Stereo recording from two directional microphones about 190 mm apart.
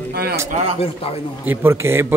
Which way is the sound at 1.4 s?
10° right (ahead or behind).